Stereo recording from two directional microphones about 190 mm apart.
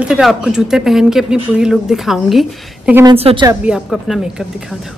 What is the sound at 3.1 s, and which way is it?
Speech, 30° right (ahead or behind).